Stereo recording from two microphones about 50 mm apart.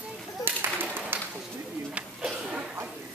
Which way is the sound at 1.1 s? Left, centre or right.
Right.